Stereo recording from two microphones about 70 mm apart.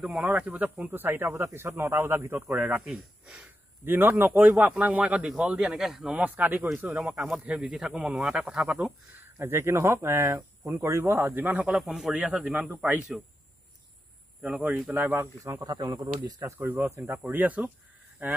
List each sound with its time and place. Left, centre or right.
0.2 s speech: right
2.5 s a man's voice: right; by 6.1 s centre
6.1 s a man's voice: right
7.0 s speech: centre
7.4 s speech: centre
8.6 s speech: right
11.7 s speech: centre
14.4 s a man's voice: right
15.6 s speech: right
16.0 s speech: right
16.5 s a man's voice: right
16.8 s speech: right
17.3 s a man's voice: right